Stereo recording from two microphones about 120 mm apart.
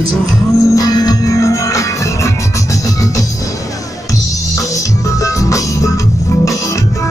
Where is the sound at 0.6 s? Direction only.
30° left (ahead or behind).